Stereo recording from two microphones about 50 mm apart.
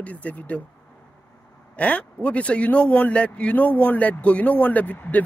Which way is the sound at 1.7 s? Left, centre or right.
Left.